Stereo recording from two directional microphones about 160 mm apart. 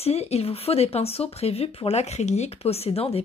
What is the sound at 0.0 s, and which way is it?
Speech, 40° left (ahead or behind).